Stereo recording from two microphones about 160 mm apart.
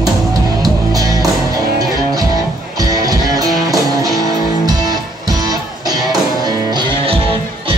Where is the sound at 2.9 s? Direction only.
20° right (ahead or behind).